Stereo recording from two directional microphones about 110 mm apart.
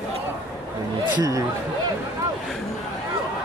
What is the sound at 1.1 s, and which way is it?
Speech, 35° right (ahead or behind).